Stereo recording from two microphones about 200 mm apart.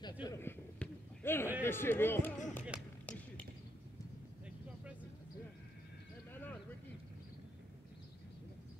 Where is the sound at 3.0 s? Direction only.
5° left (ahead or behind).